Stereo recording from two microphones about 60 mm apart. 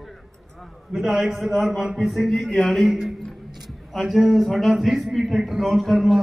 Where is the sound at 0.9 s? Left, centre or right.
Centre.